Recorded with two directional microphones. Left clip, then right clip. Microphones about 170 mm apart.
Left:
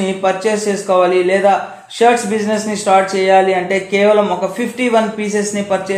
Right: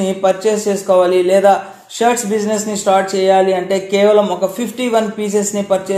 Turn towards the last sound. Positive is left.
turn(degrees=-40)  # may be behind; listen again after turning